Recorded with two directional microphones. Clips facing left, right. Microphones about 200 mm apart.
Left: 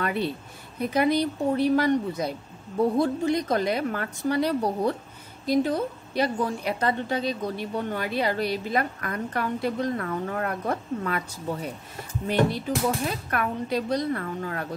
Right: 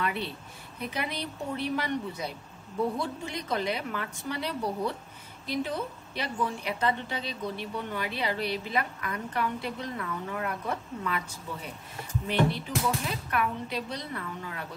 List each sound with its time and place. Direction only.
0.0 s a woman's voice: 45° left (ahead or behind)